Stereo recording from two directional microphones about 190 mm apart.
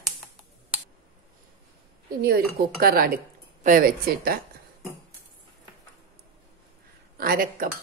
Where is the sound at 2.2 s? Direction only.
55° right (ahead or behind).